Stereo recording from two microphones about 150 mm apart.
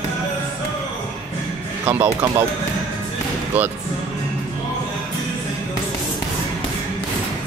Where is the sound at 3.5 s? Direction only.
10° right (ahead or behind).